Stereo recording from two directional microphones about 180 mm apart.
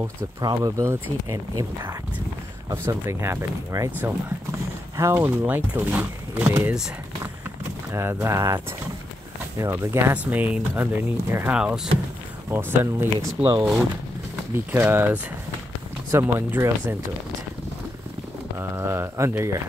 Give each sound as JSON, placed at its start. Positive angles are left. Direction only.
{"t": 0.0, "sound": "speech", "side_deg": -20}
{"t": 7.9, "sound": "speech", "side_deg": -15}
{"t": 18.6, "sound": "speech", "side_deg": -15}